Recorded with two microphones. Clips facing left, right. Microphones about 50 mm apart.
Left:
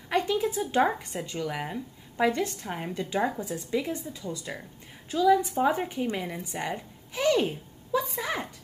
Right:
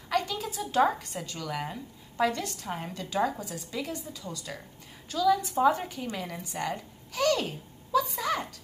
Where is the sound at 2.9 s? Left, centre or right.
Left.